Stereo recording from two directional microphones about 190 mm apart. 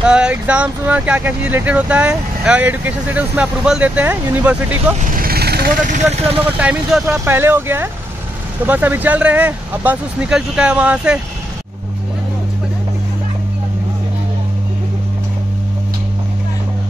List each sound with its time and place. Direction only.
0.0 s speech: 5° right (ahead or behind)
5.1 s speech: 50° right (ahead or behind); by 6.4 s 35° right (ahead or behind)
6.4 s speech: 5° right (ahead or behind)